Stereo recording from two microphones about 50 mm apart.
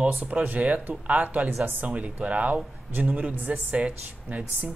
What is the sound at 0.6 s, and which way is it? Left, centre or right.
Speech, right.